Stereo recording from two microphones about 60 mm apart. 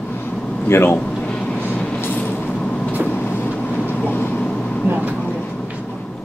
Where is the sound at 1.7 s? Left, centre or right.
Centre.